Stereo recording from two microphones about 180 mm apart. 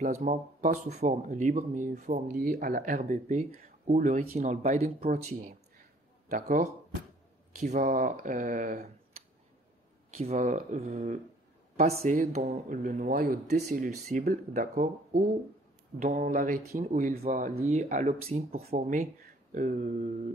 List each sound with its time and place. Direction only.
0.0 s speech: 45° right (ahead or behind)
6.2 s speech: 50° right (ahead or behind)
10.1 s speech: 35° right (ahead or behind)